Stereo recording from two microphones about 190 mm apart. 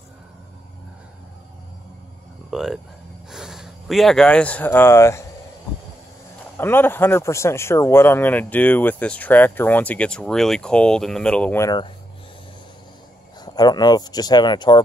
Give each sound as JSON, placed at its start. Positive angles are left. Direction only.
{"t": 2.5, "sound": "speech", "side_deg": 0}
{"t": 6.5, "sound": "speech", "side_deg": 10}
{"t": 13.4, "sound": "speech", "side_deg": 20}